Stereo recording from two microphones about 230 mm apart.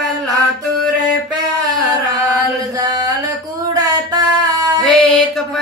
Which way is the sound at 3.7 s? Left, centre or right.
Centre.